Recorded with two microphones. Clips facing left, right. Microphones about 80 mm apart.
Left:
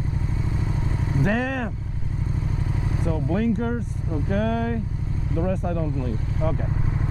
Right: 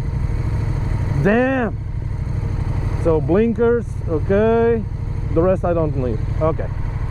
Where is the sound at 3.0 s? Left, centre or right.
Right.